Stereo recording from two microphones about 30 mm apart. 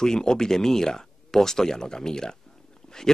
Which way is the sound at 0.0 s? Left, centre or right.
Left.